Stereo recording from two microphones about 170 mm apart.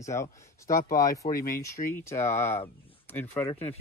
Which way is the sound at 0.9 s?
55° left (ahead or behind).